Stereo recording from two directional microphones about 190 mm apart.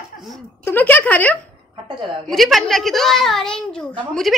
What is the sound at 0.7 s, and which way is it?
A woman's voice, 10° left (ahead or behind).